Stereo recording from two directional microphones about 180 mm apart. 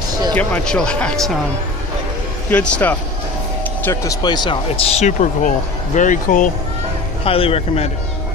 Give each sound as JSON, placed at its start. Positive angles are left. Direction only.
{"t": 0.3, "sound": "speech", "side_deg": 10}
{"t": 2.5, "sound": "speech", "side_deg": 5}
{"t": 7.2, "sound": "speech", "side_deg": 30}